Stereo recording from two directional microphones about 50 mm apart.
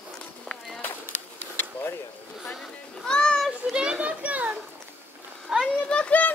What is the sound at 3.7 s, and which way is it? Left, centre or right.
Children playing, centre.